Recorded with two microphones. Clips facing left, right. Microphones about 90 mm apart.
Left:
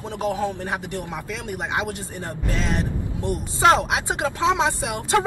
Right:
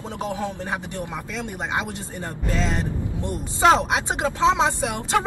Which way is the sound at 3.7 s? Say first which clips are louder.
Even; 25° right (ahead or behind).